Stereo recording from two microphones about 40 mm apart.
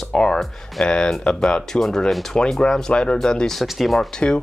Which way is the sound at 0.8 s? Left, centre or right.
Left.